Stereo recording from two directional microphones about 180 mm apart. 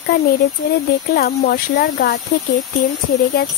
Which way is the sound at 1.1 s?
60° left (ahead or behind).